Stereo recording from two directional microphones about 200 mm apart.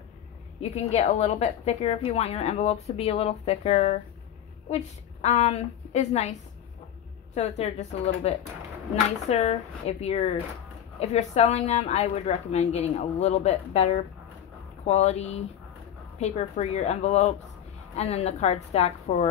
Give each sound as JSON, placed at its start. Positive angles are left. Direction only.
{"t": 0.6, "sound": "a woman's voice", "side_deg": 35}
{"t": 7.3, "sound": "a woman's voice", "side_deg": 35}